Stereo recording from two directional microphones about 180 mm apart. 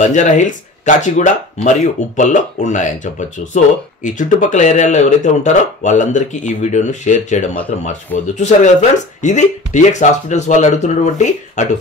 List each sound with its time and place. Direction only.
0.0 s speech: 45° left (ahead or behind)